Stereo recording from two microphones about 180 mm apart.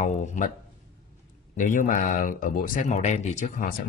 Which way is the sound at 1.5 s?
45° left (ahead or behind).